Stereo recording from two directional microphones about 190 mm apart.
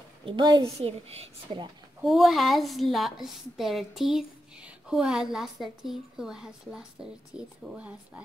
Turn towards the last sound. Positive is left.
turn(degrees=-5)  # may be behind; listen again after turning